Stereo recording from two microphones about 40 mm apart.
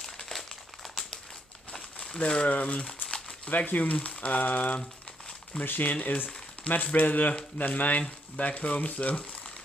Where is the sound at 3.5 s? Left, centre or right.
Left.